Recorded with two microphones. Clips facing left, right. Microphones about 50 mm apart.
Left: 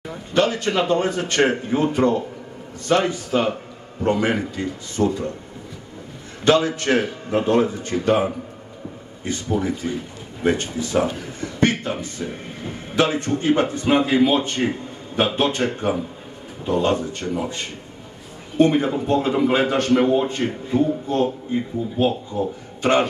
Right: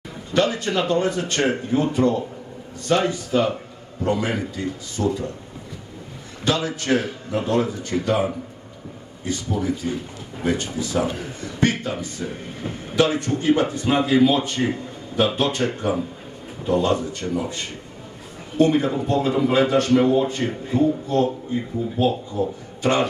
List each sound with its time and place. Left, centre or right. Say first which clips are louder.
0.3 s a sound: left 1 dB; left
0.7 s a man's voice: left 1 dB; left
3.3 s a man's voice: even; left
6.4 s a man's voice: left 6 dB; left
18.6 s a man's voice: left 1 dB; left